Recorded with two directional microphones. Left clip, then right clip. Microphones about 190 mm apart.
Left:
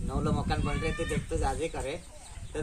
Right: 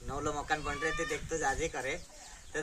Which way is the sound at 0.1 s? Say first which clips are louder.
Left 1 dB; 15° right (ahead or behind).